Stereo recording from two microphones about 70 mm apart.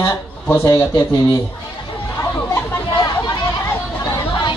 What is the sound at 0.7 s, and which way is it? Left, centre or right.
Speech, left.